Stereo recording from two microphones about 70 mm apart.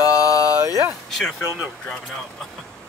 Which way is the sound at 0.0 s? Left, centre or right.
Left.